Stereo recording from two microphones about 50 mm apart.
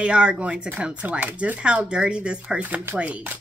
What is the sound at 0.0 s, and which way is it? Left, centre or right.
Speech, right.